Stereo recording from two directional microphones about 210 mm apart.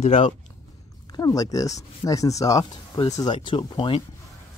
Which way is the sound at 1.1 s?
15° left (ahead or behind).